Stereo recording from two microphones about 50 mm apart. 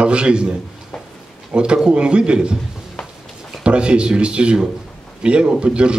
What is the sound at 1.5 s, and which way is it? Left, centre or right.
Speech, centre.